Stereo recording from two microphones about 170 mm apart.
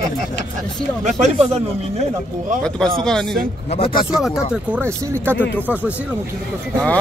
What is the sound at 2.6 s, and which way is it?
Speech, 5° left (ahead or behind).